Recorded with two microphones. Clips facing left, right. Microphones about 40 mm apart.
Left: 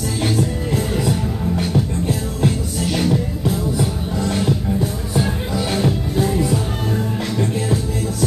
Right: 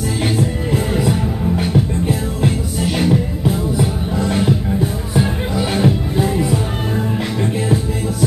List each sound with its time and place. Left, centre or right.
0.2 s music: centre